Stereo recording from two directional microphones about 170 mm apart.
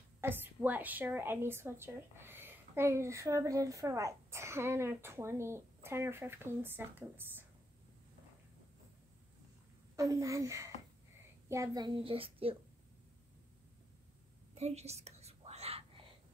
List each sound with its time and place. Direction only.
0.2 s a woman's voice: 10° right (ahead or behind)
9.9 s a child's voice: 20° right (ahead or behind)
14.5 s whispering: 40° right (ahead or behind)